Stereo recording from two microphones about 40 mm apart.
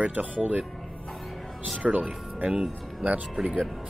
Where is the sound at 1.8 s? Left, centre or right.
Centre.